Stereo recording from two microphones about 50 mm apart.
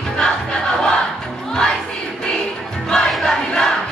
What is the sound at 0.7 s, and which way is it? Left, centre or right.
Music, centre.